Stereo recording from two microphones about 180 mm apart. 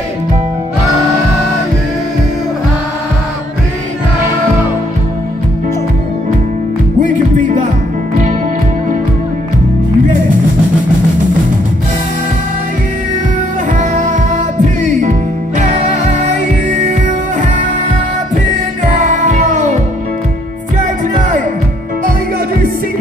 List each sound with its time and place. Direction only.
7.0 s music: 45° right (ahead or behind)
15.0 s music: 45° right (ahead or behind)
18.9 s music: 45° right (ahead or behind)